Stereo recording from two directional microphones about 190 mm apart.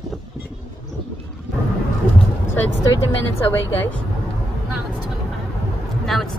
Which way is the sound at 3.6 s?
75° left (ahead or behind).